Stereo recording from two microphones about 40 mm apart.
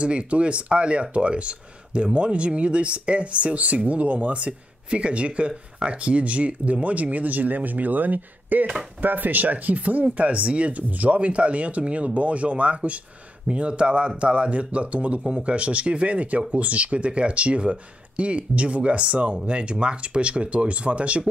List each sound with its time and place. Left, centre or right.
0.0 s speech: right